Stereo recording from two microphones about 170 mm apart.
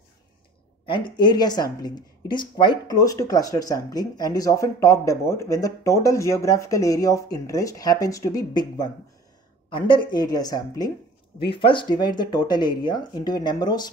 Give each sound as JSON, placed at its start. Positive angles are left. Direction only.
{"t": 0.8, "sound": "speech", "side_deg": 30}